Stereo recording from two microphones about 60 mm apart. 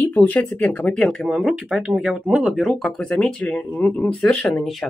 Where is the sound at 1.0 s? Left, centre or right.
Centre.